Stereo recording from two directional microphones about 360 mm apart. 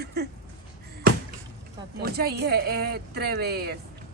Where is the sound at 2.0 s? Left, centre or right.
Right.